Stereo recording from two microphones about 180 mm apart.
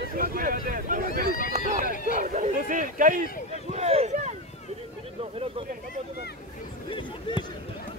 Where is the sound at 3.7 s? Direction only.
35° right (ahead or behind).